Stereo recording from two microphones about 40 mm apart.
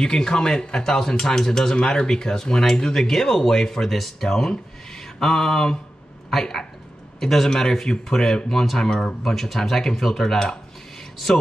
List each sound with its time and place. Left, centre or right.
0.0 s speech: centre